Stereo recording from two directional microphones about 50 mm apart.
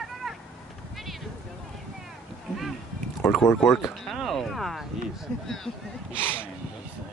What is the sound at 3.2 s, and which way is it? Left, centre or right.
Speech, centre.